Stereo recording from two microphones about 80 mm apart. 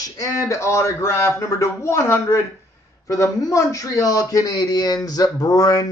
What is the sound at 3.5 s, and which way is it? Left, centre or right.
Speech, left.